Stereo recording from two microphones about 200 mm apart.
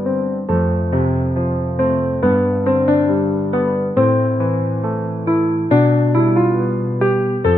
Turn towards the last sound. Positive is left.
turn(degrees=20)  # may be behind; listen again after turning